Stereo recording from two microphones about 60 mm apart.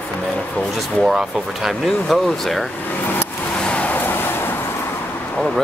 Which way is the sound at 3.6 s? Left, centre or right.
Centre.